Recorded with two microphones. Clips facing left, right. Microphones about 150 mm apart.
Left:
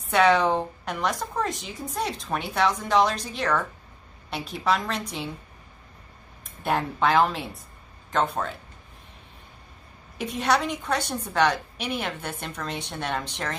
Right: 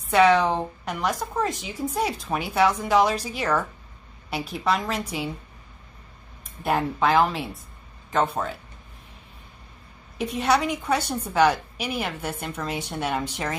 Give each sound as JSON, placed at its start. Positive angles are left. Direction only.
{"t": 0.0, "sound": "a woman's voice", "side_deg": 0}
{"t": 6.4, "sound": "a woman's voice", "side_deg": 0}
{"t": 10.1, "sound": "a woman's voice", "side_deg": 0}